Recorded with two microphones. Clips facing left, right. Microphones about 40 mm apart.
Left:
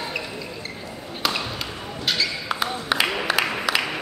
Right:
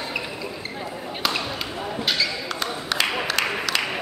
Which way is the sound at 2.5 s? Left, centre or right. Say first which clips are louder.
Left 3 dB; centre.